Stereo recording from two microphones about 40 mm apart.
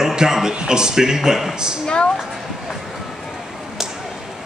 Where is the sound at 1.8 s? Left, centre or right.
Left.